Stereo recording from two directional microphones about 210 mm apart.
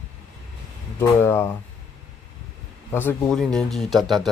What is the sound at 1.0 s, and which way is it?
Speech, 10° left (ahead or behind).